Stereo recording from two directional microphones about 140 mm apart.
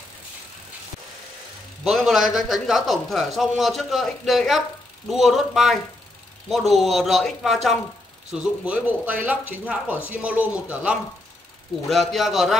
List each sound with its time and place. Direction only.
1.9 s speech: centre (ahead or behind)
11.9 s speech: centre (ahead or behind)